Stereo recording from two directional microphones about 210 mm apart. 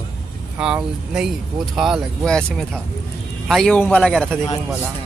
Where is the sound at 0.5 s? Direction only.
5° right (ahead or behind).